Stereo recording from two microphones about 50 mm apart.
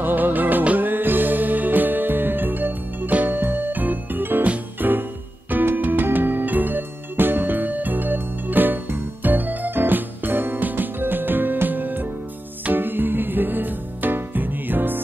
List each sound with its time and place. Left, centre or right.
0.0 s music: right
3.1 s music: right
3.3 s music: right